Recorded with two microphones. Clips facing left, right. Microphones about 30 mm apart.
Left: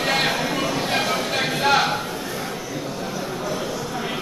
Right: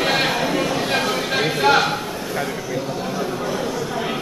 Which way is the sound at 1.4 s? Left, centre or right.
Centre.